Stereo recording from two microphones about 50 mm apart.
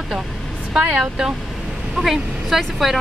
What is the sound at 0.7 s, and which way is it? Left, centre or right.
Speech, centre.